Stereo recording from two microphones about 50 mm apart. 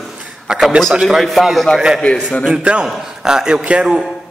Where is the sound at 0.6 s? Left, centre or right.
Centre.